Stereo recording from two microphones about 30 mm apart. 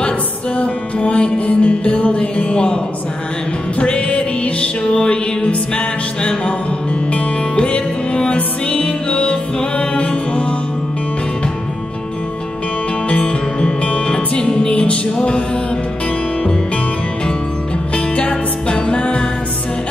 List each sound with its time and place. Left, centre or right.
1.0 s music: left
2.1 s music: left
3.8 s music: left
13.1 s music: left
14.7 s music: left
18.3 s music: left